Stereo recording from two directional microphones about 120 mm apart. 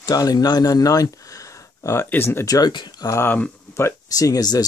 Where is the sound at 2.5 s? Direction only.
35° left (ahead or behind); by 3.5 s 15° left (ahead or behind).